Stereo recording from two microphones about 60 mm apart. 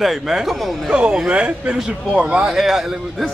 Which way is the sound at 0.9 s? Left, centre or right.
Centre.